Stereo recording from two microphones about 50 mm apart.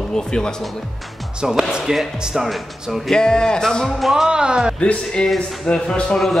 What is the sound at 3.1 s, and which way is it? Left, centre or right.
A man's voice, centre.